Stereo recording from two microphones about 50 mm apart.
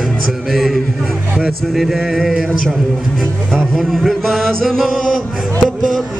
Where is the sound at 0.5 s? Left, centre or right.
Centre.